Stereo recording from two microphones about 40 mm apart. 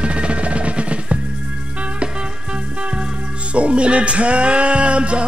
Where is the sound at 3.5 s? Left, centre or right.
Right.